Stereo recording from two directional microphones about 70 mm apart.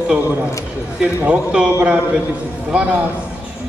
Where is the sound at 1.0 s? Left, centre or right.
Centre.